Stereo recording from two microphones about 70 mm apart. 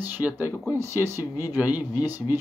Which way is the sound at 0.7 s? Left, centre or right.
Right.